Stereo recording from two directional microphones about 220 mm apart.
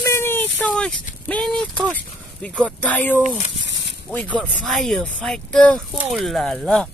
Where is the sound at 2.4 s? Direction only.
5° left (ahead or behind).